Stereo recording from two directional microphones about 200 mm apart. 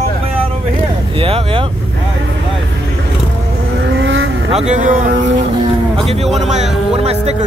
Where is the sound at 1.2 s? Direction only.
30° right (ahead or behind).